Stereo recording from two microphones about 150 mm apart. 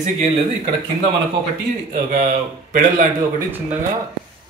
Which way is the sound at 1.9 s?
60° right (ahead or behind).